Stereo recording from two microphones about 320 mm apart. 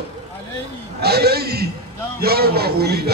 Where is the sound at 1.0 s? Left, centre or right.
Right.